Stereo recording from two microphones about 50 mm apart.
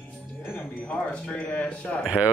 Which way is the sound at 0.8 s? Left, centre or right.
Left.